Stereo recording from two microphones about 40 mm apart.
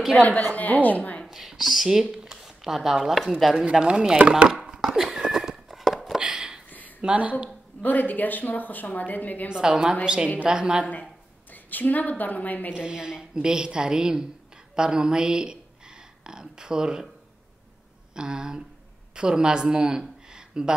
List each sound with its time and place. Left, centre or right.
0.2 s a woman's voice: left
1.3 s speech: centre
2.2 s a sound: centre
3.5 s a woman's voice: right
4.6 s a sound: centre
6.2 s a sound: right
7.0 s a woman's voice: right
7.8 s a woman's voice: left
9.5 s a woman's voice: centre
11.5 s a woman's voice: left
12.7 s a woman's voice: right
18.1 s a woman's voice: centre
20.2 s a sound: right